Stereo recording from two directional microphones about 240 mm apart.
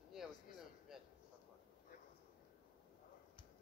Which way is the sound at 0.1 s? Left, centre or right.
Centre.